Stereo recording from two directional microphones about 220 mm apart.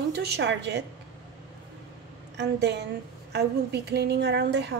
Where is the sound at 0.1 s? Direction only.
50° right (ahead or behind).